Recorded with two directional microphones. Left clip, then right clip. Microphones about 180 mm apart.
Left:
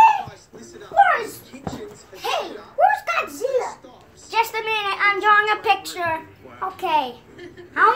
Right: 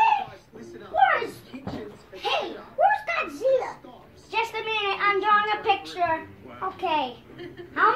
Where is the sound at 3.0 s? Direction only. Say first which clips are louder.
Left 4 dB; 60° left (ahead or behind).